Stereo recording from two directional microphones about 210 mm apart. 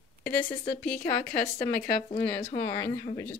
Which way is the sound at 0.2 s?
10° left (ahead or behind).